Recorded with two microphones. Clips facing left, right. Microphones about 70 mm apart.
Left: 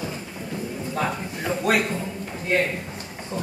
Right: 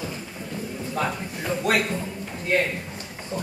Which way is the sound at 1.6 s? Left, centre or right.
Centre.